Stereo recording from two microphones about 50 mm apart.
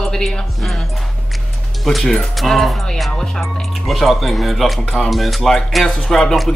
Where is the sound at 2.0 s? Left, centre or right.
Centre.